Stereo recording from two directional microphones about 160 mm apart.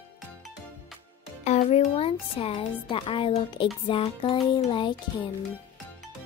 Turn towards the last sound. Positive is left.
turn(degrees=30)  # may be behind; listen again after turning